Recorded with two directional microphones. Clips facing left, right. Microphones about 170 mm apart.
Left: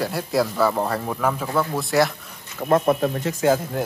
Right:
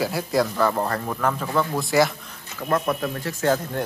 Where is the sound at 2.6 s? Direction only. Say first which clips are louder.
Left 5 dB; 30° left (ahead or behind).